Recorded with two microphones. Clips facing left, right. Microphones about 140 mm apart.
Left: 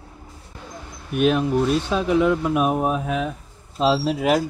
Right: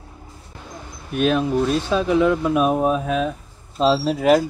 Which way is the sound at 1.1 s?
10° left (ahead or behind).